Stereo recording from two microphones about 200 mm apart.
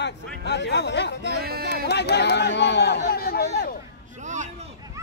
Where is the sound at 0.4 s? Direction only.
60° left (ahead or behind).